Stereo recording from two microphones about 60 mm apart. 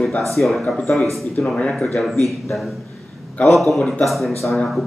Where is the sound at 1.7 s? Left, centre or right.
Centre.